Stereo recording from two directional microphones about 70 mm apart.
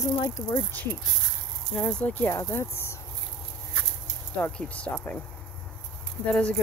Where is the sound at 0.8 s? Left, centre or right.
Left.